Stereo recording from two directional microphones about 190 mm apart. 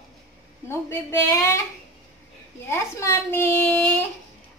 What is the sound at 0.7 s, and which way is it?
Speech, 15° left (ahead or behind).